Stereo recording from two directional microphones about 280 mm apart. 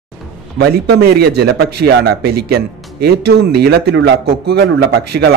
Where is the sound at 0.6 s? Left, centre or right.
Right.